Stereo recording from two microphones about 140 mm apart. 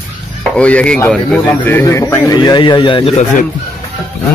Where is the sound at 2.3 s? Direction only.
30° left (ahead or behind).